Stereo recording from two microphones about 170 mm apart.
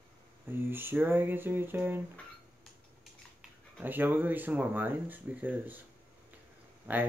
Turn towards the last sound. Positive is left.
turn(degrees=-10)  # may be behind; listen again after turning